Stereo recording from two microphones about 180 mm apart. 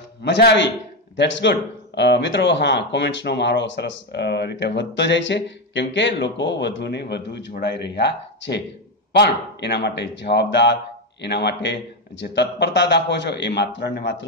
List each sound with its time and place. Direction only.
0.2 s a man's voice: 70° left (ahead or behind)